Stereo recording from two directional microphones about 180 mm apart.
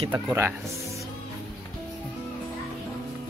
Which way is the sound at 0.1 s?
10° right (ahead or behind).